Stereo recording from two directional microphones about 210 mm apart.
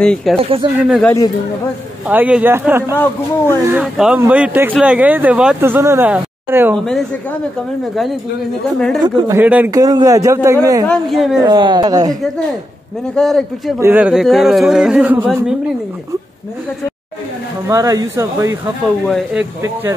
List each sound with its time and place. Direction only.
0.0 s speech: 5° left (ahead or behind)
0.4 s a woman's voice: 25° right (ahead or behind)
0.7 s speech: 5° right (ahead or behind)
1.0 s a man's voice: 15° left (ahead or behind)
2.0 s speech: 5° right (ahead or behind)
6.8 s speech: centre (ahead or behind)
9.0 s a woman's voice: 20° right (ahead or behind)
9.4 s speech: 10° right (ahead or behind)
10.9 s speech: centre (ahead or behind)
11.3 s a woman's voice: 20° right (ahead or behind)
13.1 s speech: centre (ahead or behind)
17.6 s speech: 15° right (ahead or behind)
19.0 s speech: centre (ahead or behind)